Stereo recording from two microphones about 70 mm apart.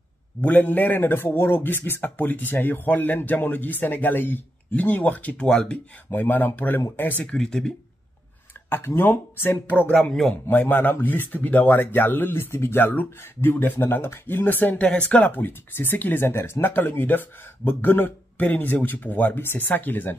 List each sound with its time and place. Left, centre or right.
0.4 s a man's voice: left
5.5 s speech: centre
6.1 s a man's voice: left
7.2 s speech: centre
8.6 s a man's voice: left